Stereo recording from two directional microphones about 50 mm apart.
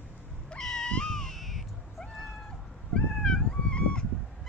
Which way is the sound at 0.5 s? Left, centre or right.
Centre.